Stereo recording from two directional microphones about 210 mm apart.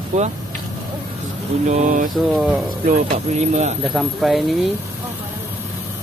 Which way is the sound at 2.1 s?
Centre (ahead or behind).